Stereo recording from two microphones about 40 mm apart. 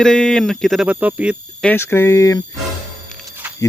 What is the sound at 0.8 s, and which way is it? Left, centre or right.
Speech, right.